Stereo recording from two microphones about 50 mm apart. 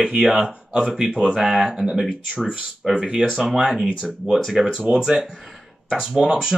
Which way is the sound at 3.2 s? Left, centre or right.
Right.